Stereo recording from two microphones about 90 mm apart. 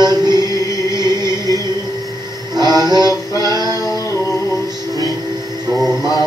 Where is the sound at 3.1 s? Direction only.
40° left (ahead or behind).